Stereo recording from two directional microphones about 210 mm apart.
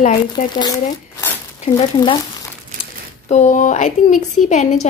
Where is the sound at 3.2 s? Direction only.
35° left (ahead or behind).